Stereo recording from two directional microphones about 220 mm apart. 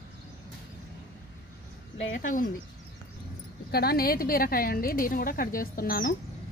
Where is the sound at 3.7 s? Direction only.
45° left (ahead or behind).